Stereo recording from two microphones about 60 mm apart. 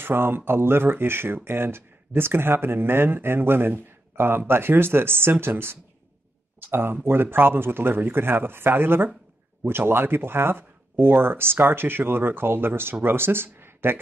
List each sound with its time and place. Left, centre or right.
0.0 s speech: right